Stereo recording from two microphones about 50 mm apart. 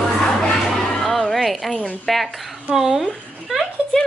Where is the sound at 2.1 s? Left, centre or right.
Centre.